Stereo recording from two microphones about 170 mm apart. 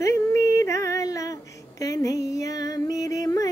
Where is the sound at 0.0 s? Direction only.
15° left (ahead or behind).